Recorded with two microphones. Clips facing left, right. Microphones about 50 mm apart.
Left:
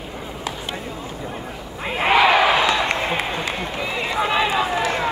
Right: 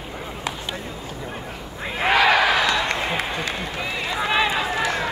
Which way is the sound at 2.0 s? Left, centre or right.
Left.